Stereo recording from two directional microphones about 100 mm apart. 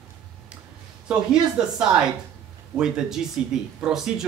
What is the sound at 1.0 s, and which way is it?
Speech, 5° right (ahead or behind).